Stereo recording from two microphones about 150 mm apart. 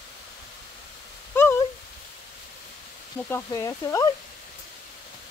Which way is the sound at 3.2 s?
20° left (ahead or behind).